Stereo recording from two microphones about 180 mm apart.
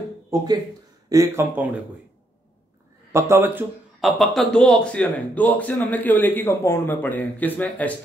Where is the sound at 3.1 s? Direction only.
15° right (ahead or behind).